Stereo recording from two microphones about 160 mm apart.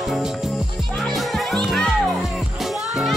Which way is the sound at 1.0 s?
Centre (ahead or behind).